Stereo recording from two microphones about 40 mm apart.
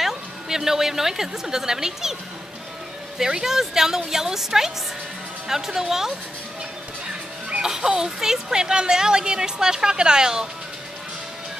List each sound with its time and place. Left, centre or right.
0.0 s a woman's voice: centre
3.2 s a woman's voice: centre
7.6 s a woman's voice: centre